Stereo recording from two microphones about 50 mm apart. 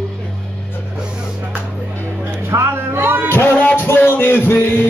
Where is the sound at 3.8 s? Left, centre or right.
Left.